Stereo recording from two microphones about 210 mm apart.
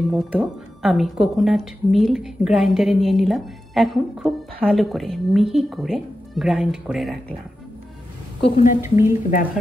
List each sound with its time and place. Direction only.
0.1 s a woman's voice: 5° right (ahead or behind)
8.4 s a woman's voice: 25° left (ahead or behind)
8.8 s speech: 10° right (ahead or behind)